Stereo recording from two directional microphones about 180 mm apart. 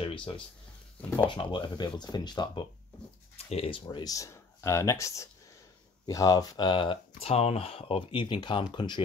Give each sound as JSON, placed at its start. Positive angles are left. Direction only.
{"t": 0.0, "sound": "speech", "side_deg": 25}
{"t": 3.4, "sound": "speech", "side_deg": 35}